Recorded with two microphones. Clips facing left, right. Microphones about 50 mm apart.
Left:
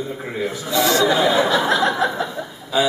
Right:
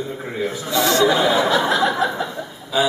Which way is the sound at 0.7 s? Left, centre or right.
Centre.